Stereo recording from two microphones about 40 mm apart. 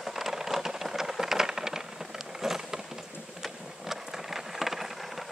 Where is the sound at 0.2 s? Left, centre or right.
Centre.